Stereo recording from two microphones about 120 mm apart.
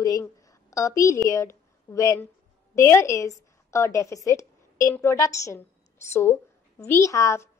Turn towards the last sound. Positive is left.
turn(degrees=25)  # may be behind; listen again after turning